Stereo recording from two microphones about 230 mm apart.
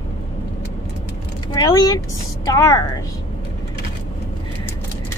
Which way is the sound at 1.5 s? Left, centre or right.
Centre.